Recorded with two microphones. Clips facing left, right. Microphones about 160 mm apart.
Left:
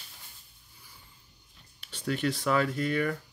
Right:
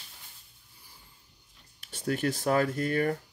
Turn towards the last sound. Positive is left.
turn(degrees=-45)  # may be behind; listen again after turning